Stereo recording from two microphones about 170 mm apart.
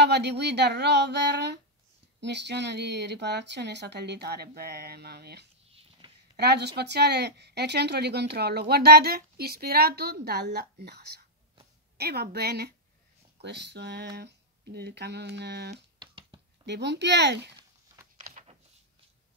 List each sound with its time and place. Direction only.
0.0 s speech: 85° right
5.8 s a sound: 30° right (ahead or behind)
6.3 s speech: 80° right
13.4 s speech: 90° right
16.0 s finger snapping: 25° right (ahead or behind)
16.6 s speech: 90° right
18.2 s a sound: 40° right (ahead or behind)